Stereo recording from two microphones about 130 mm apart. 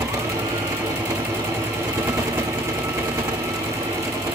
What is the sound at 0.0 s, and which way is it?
Sewing machine, 25° right (ahead or behind).